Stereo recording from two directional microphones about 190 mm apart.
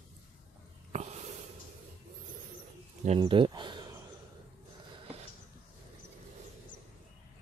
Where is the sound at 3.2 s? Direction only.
25° right (ahead or behind).